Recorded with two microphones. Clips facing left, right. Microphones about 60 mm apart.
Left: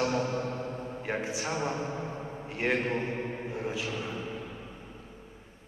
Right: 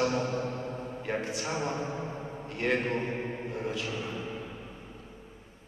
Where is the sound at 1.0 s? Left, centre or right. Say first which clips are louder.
Even; centre.